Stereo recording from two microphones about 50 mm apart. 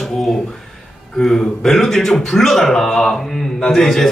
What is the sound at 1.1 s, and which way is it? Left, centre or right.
A man's voice, centre.